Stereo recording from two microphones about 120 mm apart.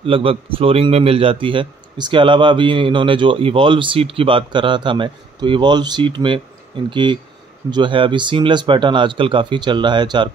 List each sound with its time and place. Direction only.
0.0 s a man's voice: 50° right (ahead or behind)